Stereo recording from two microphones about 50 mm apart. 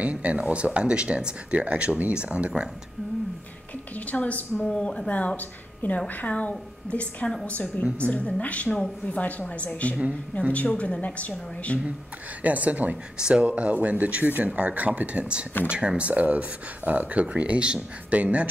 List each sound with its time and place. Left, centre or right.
0.0 s speech: right
3.9 s a woman's voice: left
4.6 s speech: centre
12.4 s a woman's voice: right